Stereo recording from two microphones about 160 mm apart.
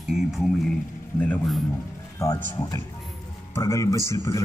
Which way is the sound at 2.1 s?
20° left (ahead or behind).